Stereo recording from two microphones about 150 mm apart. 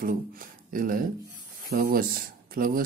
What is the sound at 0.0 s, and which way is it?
A man's voice, 70° right (ahead or behind).